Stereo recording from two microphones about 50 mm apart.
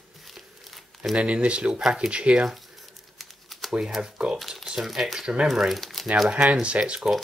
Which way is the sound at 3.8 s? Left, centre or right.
Centre.